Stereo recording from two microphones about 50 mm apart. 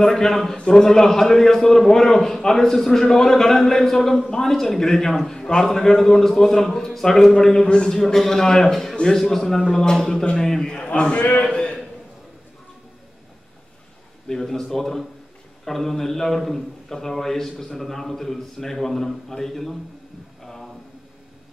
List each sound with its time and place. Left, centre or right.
0.0 s a man's voice: centre
7.6 s speech: centre
7.9 s a man's voice: centre
11.1 s a man's voice: left
11.5 s a sound: centre
14.2 s a man's voice: centre
20.4 s a sound: centre